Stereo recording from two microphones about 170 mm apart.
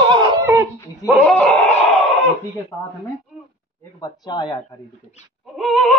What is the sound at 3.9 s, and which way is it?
Speech, 25° left (ahead or behind).